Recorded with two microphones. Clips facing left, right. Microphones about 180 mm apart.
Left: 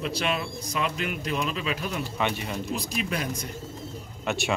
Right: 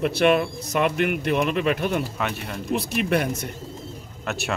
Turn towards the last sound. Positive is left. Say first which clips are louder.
# left 1 dB
turn(degrees=0)  # may be behind; listen again after turning